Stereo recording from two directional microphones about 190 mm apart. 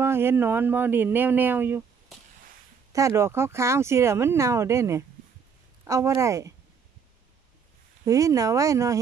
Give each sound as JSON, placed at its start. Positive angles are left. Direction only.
{"t": 0.0, "sound": "speech", "side_deg": -10}
{"t": 2.9, "sound": "speech", "side_deg": -15}
{"t": 8.0, "sound": "speech", "side_deg": -15}